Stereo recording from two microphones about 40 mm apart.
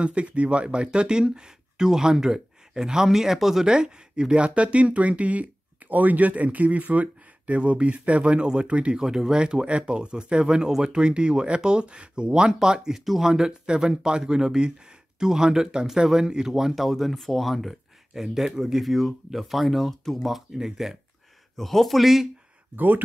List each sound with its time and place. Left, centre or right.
0.0 s speech: right; by 3.7 s centre
3.7 s speech: right
9.0 s speech: centre
18.1 s speech: centre
20.5 s speech: centre
21.5 s speech: centre
22.8 s speech: right